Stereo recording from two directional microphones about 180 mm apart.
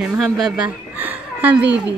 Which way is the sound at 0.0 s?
5° right (ahead or behind).